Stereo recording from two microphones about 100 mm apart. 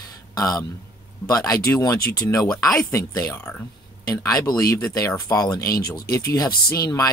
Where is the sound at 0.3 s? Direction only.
40° left (ahead or behind).